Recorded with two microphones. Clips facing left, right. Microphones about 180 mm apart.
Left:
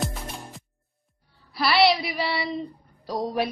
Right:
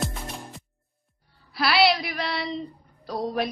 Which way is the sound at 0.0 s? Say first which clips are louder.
Even; centre (ahead or behind).